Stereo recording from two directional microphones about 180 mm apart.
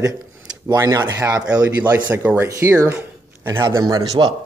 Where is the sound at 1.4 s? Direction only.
5° right (ahead or behind).